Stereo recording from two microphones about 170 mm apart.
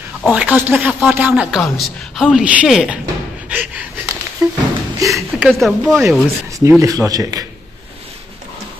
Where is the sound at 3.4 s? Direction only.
10° right (ahead or behind).